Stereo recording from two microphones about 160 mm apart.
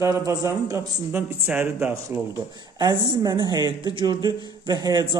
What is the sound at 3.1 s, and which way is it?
A man's voice, 25° right (ahead or behind).